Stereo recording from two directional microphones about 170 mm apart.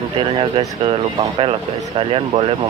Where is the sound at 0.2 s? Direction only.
30° right (ahead or behind).